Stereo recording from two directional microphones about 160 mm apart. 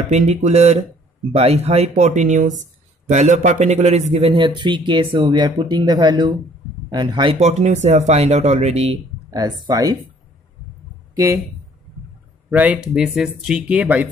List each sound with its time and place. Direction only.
0.1 s speech: 45° right (ahead or behind); by 7.3 s 30° right (ahead or behind)
7.3 s speech: 45° right (ahead or behind)
9.7 s speech: 25° right (ahead or behind)
11.1 s speech: 20° right (ahead or behind)
12.4 s speech: 10° right (ahead or behind)